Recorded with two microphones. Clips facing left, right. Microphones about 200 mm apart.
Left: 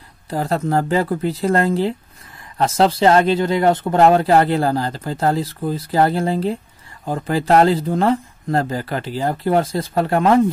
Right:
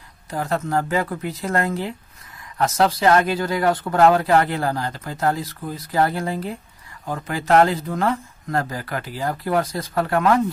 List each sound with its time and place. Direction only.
0.3 s speech: 35° left (ahead or behind)